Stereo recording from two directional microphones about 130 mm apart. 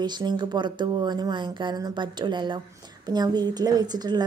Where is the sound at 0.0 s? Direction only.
35° right (ahead or behind).